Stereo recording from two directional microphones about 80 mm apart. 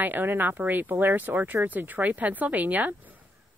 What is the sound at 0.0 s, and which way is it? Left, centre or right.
Speech, right.